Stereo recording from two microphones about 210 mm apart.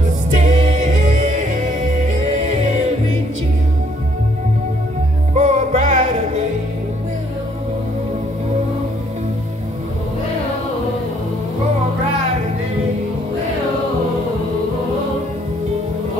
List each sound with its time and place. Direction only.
0.3 s music: 35° right (ahead or behind)
5.3 s music: 35° right (ahead or behind)